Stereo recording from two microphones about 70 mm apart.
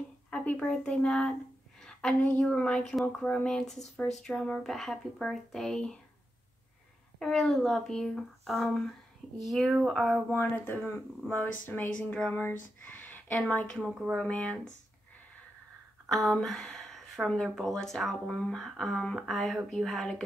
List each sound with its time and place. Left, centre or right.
0.3 s a woman's voice: centre
7.2 s speech: centre
10.3 s speech: left; by 14.7 s centre
16.3 s speech: centre